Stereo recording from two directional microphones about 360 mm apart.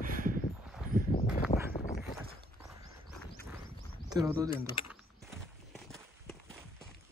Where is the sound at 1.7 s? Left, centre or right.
Left.